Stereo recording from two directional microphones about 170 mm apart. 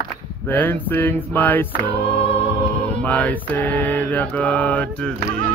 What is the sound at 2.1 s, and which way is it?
Music, 10° left (ahead or behind).